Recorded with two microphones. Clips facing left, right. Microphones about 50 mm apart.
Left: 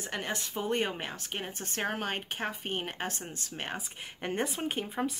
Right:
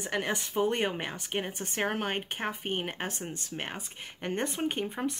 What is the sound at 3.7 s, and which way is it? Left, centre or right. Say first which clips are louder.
Speech: left 2 dB; centre.